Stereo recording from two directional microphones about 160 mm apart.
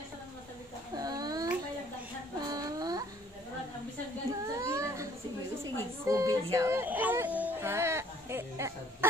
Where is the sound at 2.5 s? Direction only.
25° right (ahead or behind).